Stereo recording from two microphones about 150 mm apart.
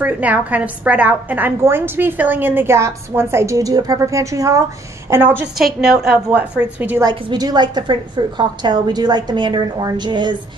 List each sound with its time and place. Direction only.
0.0 s a woman's voice: 10° right (ahead or behind)
7.0 s a woman's voice: 25° right (ahead or behind)